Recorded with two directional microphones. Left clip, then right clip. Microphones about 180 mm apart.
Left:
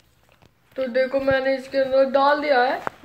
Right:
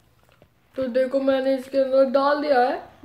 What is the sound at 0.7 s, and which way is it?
Speech, 25° right (ahead or behind).